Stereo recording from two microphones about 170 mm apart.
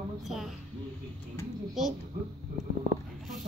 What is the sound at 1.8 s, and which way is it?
Speech, centre (ahead or behind).